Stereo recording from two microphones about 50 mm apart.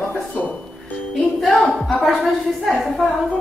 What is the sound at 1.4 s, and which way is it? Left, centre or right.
A woman's voice, centre.